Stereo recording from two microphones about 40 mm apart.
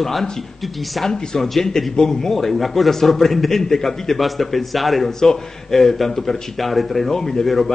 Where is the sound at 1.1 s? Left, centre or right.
Centre.